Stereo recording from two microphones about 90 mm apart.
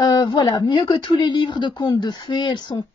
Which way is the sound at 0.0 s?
55° left (ahead or behind).